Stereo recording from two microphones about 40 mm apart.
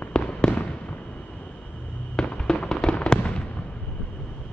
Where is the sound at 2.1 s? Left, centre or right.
Left.